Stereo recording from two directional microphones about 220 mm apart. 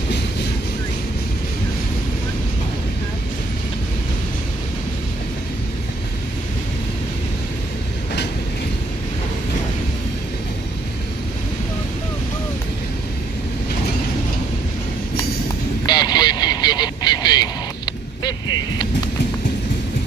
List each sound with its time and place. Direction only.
15.8 s vehicle: 20° left (ahead or behind)